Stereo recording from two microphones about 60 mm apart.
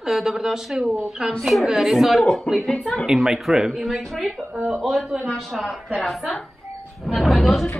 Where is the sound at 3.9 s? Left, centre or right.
Centre.